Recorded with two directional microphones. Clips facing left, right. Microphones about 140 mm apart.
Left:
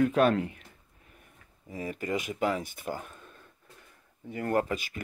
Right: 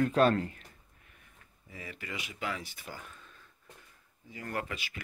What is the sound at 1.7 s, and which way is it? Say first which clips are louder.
Speech: left 11 dB; 40° left (ahead or behind).